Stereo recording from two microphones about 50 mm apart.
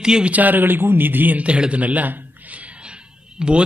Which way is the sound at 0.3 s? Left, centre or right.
Right.